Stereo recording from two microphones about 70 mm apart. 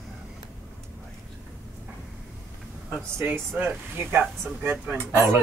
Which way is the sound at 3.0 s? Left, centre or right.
Right.